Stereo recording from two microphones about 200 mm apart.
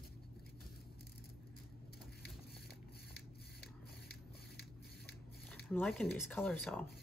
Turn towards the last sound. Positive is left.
turn(degrees=5)  # may be behind; listen again after turning